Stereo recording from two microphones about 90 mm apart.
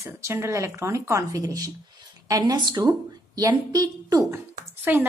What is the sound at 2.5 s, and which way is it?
A woman's voice, 50° right (ahead or behind).